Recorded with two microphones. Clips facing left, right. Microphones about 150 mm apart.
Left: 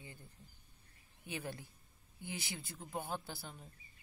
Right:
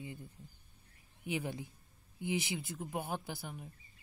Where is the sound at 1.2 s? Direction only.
15° right (ahead or behind).